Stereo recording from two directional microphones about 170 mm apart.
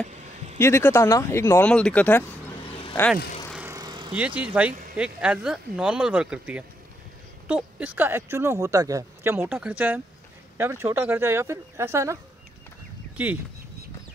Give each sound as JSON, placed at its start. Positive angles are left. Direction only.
{"t": 0.1, "sound": "a sound", "side_deg": -40}
{"t": 0.6, "sound": "speech", "side_deg": 15}
{"t": 3.7, "sound": "vehicle", "side_deg": -25}
{"t": 4.4, "sound": "speech", "side_deg": -10}